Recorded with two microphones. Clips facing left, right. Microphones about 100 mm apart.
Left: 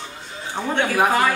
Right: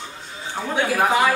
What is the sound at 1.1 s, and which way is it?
Speech, centre (ahead or behind).